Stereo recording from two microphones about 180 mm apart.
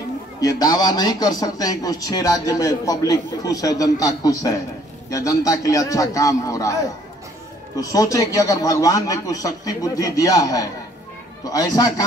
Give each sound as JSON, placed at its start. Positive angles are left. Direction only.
{"t": 0.4, "sound": "speech", "side_deg": 20}